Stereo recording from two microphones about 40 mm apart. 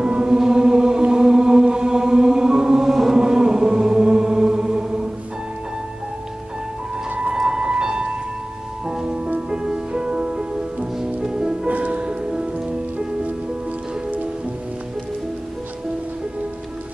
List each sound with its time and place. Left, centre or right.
0.0 s chant: right
7.2 s music: centre
11.6 s music: right